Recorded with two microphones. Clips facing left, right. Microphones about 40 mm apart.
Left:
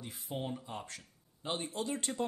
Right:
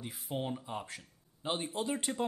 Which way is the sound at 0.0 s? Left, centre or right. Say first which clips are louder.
Right 2 dB; centre.